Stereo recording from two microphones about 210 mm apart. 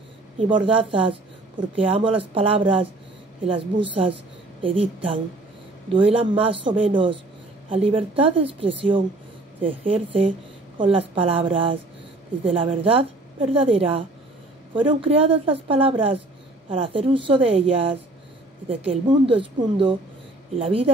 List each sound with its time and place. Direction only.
0.5 s a woman's voice: 25° right (ahead or behind)